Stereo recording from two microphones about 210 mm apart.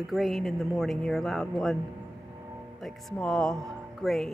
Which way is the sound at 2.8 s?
Centre (ahead or behind).